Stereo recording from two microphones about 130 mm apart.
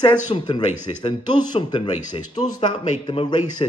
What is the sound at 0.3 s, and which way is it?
Speech, 35° left (ahead or behind).